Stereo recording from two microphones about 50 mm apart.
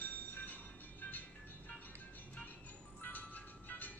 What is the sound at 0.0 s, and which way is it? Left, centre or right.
Train, left.